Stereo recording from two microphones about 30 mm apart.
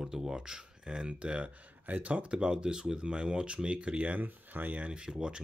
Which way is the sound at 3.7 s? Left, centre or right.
Right.